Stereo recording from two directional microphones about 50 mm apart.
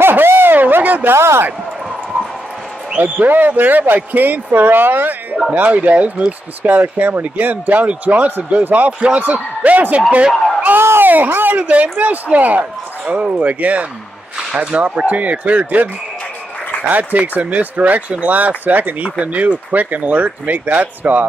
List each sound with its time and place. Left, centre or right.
0.0 s a sound: right
1.1 s a man's voice: right
3.0 s speech: right
10.8 s a sound: right
11.1 s speech: right
11.6 s speech: right